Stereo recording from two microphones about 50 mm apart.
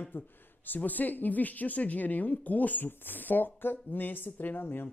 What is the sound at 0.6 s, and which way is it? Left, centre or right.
Speech, left.